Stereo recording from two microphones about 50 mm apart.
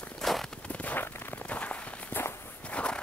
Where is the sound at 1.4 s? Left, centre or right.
Left.